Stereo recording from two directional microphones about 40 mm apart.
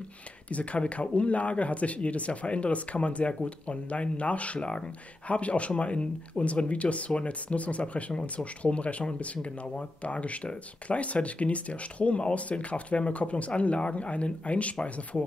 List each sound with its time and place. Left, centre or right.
0.5 s speech: left
4.6 s speech: left
5.3 s speech: left